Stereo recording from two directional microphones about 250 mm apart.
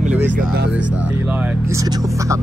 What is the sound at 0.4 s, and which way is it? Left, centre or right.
Speech, right.